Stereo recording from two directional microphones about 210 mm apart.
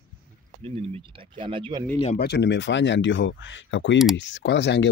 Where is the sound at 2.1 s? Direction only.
55° left (ahead or behind).